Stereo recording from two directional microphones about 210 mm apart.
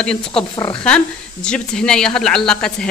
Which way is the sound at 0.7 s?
5° left (ahead or behind).